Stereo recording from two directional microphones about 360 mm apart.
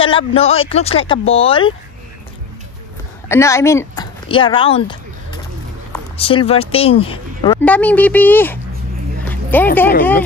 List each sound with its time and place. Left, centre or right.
0.0 s speech: centre
3.3 s speech: centre
5.9 s speech: centre
9.3 s a sound: centre